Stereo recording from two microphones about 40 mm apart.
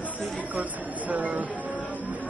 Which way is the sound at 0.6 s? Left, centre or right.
Right.